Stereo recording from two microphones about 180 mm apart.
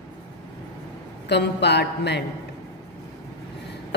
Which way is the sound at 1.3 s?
70° left (ahead or behind).